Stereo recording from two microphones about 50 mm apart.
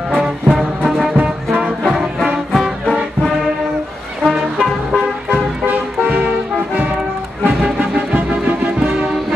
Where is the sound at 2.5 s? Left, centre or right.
Centre.